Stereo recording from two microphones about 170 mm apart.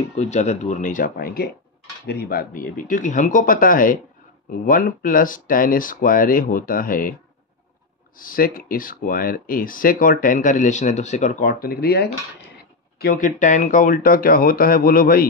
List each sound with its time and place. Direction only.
0.2 s speech: 40° left (ahead or behind)
8.2 s speech: 55° left (ahead or behind)
13.0 s speech: 50° left (ahead or behind)